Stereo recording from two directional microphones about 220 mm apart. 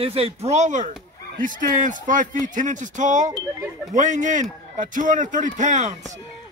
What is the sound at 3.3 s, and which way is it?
Speech, 15° right (ahead or behind).